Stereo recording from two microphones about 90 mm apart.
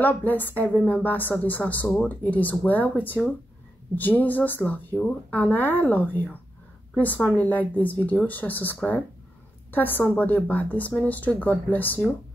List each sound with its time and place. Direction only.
0.0 s a woman's voice: 20° left (ahead or behind)